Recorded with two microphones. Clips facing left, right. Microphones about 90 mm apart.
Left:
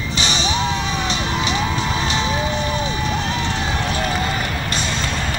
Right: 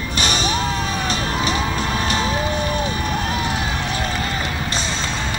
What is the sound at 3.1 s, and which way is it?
Vehicle, 10° right (ahead or behind).